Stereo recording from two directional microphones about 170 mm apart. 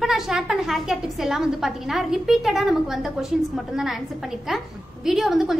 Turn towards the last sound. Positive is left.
turn(degrees=0)  # may be behind; listen again after turning